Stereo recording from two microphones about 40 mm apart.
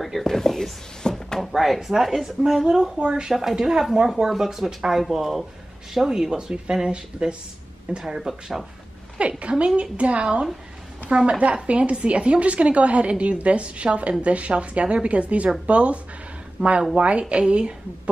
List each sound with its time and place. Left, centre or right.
0.0 s whispering: centre
0.3 s whispering: centre
1.4 s a woman's voice: centre; by 8.0 s right
8.3 s speech: centre
9.4 s a woman's voice: right
11.2 s a woman's voice: right